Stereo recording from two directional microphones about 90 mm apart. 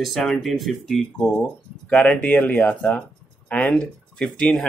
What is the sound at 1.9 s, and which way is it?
Speech, 15° left (ahead or behind).